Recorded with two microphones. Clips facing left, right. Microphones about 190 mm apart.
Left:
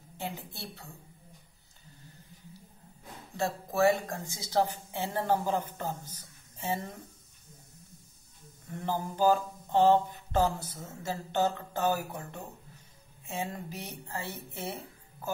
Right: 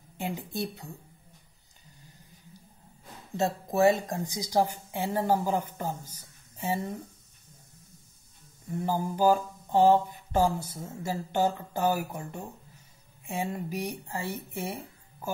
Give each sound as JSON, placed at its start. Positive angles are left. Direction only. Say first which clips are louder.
{"t": 0.2, "sound": "a woman's voice", "louder": "right 7 dB", "side_deg": -15}
{"t": 3.3, "sound": "a woman's voice", "louder": "right 3 dB", "side_deg": -20}
{"t": 9.1, "sound": "a woman's voice", "louder": "right 1 dB", "side_deg": -10}